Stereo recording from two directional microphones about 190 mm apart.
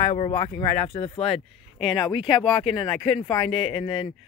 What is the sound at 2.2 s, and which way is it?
Speech, 25° left (ahead or behind).